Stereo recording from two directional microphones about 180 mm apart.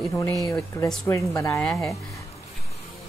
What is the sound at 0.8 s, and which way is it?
Speech, 15° left (ahead or behind).